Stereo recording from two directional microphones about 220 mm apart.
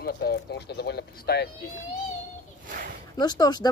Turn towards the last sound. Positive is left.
turn(degrees=20)  # may be behind; listen again after turning